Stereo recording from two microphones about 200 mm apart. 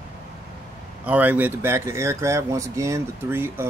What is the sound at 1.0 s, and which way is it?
Speech, 10° right (ahead or behind).